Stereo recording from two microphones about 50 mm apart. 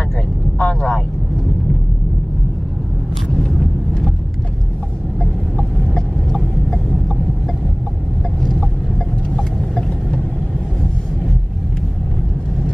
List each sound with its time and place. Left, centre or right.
0.6 s vehicle: centre
5.2 s a sound: left
8.4 s vehicle: centre